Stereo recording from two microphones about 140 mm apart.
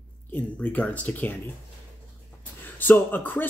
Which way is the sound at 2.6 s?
15° left (ahead or behind).